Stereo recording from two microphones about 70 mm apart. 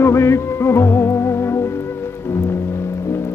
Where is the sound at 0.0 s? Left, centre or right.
Left.